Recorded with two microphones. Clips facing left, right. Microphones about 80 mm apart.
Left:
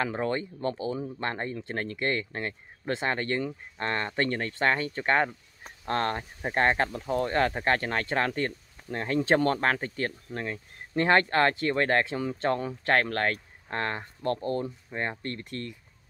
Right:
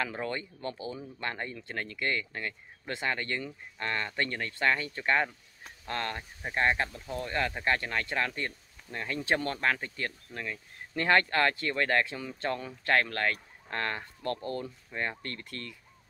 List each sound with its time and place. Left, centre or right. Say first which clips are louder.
0.0 s speech: left 5 dB; left